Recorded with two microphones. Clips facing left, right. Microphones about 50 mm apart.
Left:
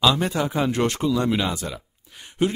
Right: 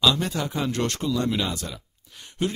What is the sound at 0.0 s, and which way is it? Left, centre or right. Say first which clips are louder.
Speech: left 3 dB; centre.